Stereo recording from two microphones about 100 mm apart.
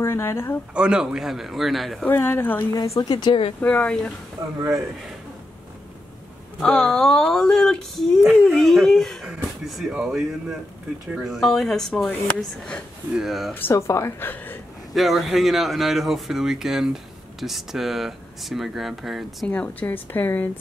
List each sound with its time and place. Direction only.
0.0 s a woman's voice: 25° left (ahead or behind)
0.7 s speech: 10° right (ahead or behind)
2.0 s a woman's voice: 20° left (ahead or behind)
3.0 s speech: 45° left (ahead or behind)
3.6 s speech: 10° left (ahead or behind)
4.6 s speech: 35° right (ahead or behind)
6.6 s speech: 5° left (ahead or behind)
11.2 s speech: centre (ahead or behind)
13.2 s speech: 5° right (ahead or behind)
13.6 s a woman's voice: 25° left (ahead or behind)
14.3 s a sound: 20° left (ahead or behind)
14.9 s speech: centre (ahead or behind)
19.4 s a woman's voice: 10° left (ahead or behind)